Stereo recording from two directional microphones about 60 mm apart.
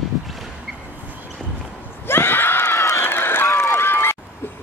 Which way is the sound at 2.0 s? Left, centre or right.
Left.